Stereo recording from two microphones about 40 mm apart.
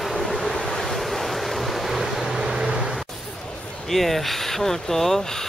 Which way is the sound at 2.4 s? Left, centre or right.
Centre.